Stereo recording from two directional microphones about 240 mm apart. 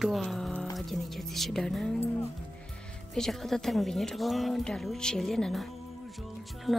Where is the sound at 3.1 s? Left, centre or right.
Centre.